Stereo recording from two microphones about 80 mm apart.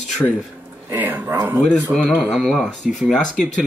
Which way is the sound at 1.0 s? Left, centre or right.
Right.